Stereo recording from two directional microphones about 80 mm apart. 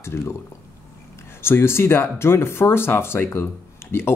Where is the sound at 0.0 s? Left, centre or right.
Left.